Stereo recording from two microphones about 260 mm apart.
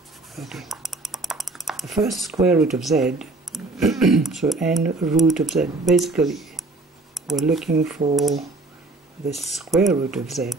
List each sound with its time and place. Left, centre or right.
0.4 s a sound: centre
2.4 s speech: centre
8.0 s speech: right
9.3 s speech: centre